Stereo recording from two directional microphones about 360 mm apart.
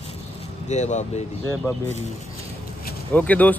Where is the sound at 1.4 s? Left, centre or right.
Centre.